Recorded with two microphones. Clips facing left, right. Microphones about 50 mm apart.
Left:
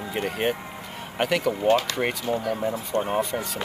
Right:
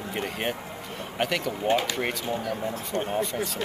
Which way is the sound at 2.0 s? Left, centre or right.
Centre.